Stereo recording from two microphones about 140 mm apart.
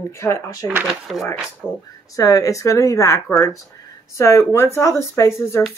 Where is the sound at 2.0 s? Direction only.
25° left (ahead or behind).